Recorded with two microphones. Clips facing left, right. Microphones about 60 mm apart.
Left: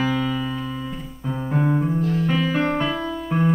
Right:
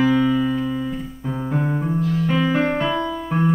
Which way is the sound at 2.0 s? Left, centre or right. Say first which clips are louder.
Even; left.